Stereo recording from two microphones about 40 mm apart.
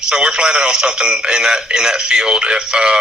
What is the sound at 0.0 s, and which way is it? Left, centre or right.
Speech, centre.